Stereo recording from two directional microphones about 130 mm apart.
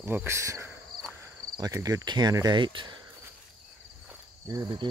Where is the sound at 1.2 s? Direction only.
30° right (ahead or behind).